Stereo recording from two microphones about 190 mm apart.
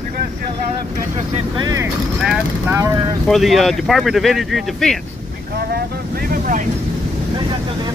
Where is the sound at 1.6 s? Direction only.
20° right (ahead or behind).